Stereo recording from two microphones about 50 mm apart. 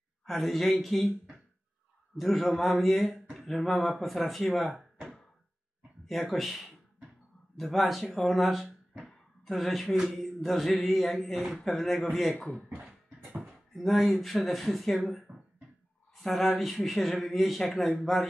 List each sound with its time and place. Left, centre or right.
0.2 s speech: centre
6.0 s speech: centre
9.0 s a sound: centre
10.1 s speech: centre
12.4 s speech: left
13.3 s speech: centre